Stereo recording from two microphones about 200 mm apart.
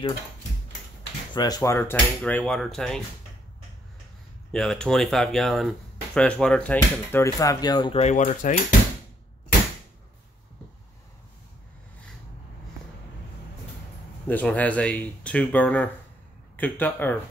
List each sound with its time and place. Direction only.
1.3 s speech: 20° left (ahead or behind); by 3.0 s centre (ahead or behind)
4.5 s speech: centre (ahead or behind); by 8.0 s 20° left (ahead or behind)
8.0 s cutlery: 35° left (ahead or behind)
14.2 s speech: 10° left (ahead or behind)